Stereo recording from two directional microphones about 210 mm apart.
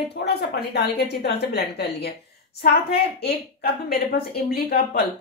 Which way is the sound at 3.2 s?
50° left (ahead or behind).